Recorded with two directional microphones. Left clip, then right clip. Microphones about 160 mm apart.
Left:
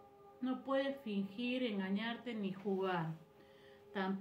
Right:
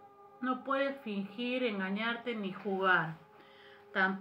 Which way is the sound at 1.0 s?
15° left (ahead or behind).